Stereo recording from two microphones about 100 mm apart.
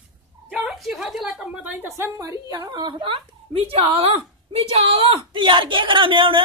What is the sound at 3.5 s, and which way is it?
A woman's voice, 75° right (ahead or behind).